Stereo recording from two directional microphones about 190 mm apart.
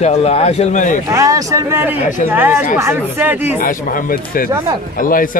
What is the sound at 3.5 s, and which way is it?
Speech, 45° left (ahead or behind).